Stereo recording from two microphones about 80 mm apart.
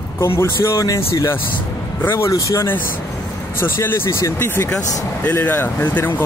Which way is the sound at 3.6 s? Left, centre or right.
Left.